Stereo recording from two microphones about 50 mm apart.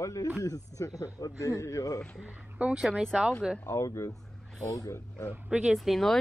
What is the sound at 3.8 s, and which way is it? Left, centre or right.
Speech, left.